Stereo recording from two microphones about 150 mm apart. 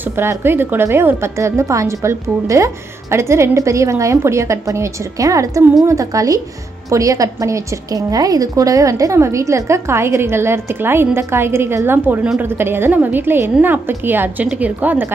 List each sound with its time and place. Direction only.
0.0 s a woman's voice: 15° right (ahead or behind)